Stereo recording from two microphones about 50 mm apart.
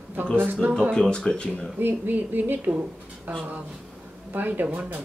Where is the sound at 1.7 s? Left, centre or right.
Right.